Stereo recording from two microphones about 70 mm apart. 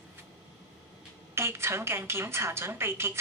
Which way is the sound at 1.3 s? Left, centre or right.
Right.